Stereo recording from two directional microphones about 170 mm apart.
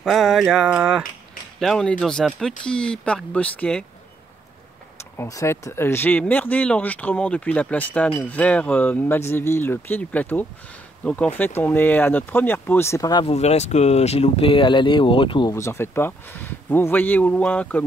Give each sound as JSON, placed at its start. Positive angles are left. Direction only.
{"t": 0.0, "sound": "speech", "side_deg": 0}
{"t": 5.1, "sound": "speech", "side_deg": 15}
{"t": 13.2, "sound": "speech", "side_deg": 35}
{"t": 15.5, "sound": "speech", "side_deg": 15}